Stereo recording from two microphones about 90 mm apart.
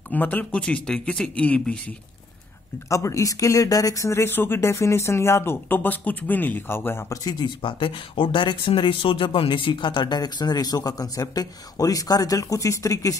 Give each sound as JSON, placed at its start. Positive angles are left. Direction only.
{"t": 0.1, "sound": "a man's voice", "side_deg": 20}
{"t": 2.9, "sound": "speech", "side_deg": 35}
{"t": 7.2, "sound": "speech", "side_deg": 55}